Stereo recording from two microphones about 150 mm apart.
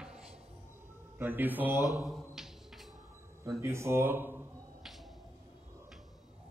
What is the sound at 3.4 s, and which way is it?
Speech, 20° right (ahead or behind).